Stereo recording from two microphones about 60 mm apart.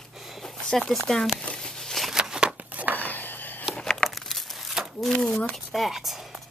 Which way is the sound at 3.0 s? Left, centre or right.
Left.